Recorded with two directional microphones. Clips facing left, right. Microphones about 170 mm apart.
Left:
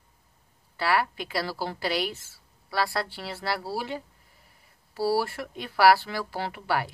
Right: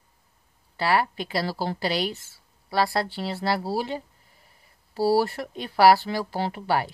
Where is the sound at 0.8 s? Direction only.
30° right (ahead or behind).